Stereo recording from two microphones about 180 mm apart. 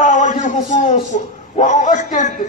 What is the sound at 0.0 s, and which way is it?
A man's voice, 45° left (ahead or behind).